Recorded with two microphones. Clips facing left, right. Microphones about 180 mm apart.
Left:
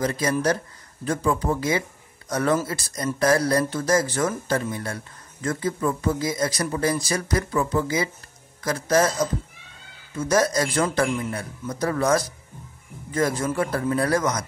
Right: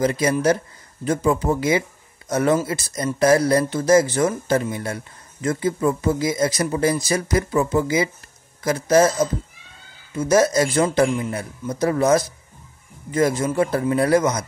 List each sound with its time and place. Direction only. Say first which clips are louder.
0.0 s speech: right 4 dB; 25° right (ahead or behind)
13.4 s speech: right 4 dB; 20° right (ahead or behind)